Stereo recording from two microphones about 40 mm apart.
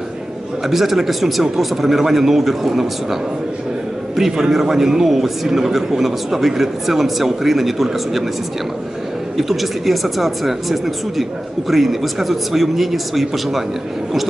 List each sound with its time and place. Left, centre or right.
0.7 s speech: centre
4.2 s a man's voice: centre
9.4 s speech: centre